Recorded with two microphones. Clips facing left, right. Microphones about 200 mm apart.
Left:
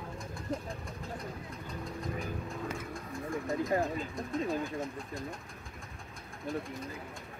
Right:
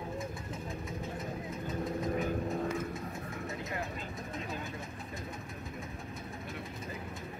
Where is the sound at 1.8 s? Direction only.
Centre (ahead or behind).